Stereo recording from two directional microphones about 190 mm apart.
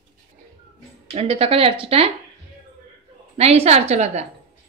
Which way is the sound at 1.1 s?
30° right (ahead or behind).